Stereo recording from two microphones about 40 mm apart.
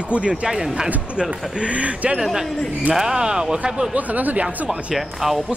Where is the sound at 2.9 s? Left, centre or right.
Centre.